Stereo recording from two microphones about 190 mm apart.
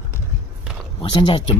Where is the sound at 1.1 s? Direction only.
25° left (ahead or behind).